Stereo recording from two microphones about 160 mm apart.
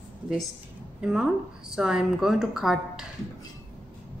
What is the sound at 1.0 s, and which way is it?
A woman's voice, 5° right (ahead or behind).